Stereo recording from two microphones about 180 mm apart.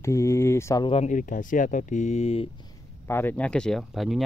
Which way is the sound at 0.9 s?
40° left (ahead or behind).